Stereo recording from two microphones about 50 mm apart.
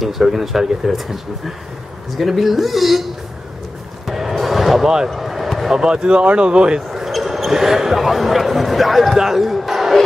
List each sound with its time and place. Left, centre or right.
0.0 s speech: centre
4.1 s music: centre
5.1 s speech: centre; by 6.8 s right
6.9 s speech: centre